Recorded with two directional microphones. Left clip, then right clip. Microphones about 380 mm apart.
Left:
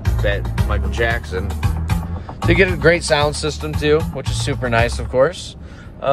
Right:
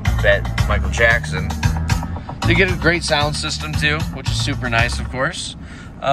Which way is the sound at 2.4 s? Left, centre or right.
Centre.